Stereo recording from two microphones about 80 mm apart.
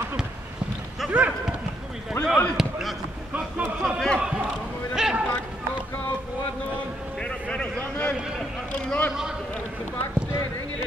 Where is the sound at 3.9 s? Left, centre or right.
Centre.